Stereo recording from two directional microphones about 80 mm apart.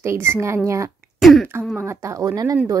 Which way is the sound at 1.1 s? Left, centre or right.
Centre.